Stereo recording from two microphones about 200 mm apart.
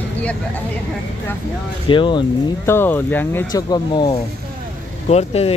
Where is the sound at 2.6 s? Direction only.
10° left (ahead or behind); by 5.5 s 30° left (ahead or behind).